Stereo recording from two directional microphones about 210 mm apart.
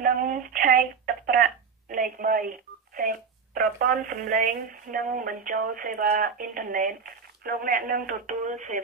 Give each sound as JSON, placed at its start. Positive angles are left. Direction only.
{"t": 0.0, "sound": "telephone", "side_deg": -40}
{"t": 4.9, "sound": "speech", "side_deg": -40}